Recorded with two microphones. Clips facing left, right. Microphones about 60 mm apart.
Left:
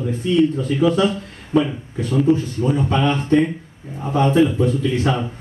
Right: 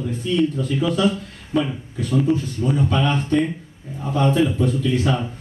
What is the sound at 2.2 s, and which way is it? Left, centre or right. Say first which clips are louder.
A man's voice: left 3 dB; left.